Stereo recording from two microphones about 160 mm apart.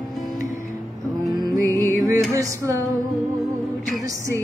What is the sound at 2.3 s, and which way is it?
Music, 20° right (ahead or behind).